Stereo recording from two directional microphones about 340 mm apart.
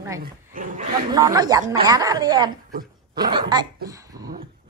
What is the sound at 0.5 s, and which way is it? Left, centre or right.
Dog, right.